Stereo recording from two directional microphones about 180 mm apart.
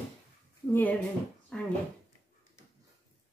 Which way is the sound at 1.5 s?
5° left (ahead or behind).